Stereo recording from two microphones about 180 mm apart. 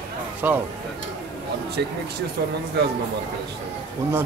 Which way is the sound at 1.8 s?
60° right (ahead or behind).